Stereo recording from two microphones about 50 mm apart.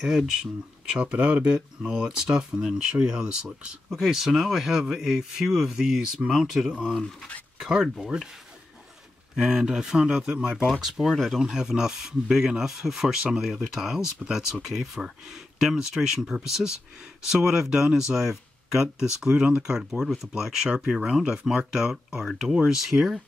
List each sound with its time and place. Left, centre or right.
1.1 s speech: centre
7.0 s speech: centre
7.5 s speech: centre
9.3 s speech: centre
10.8 s speech: centre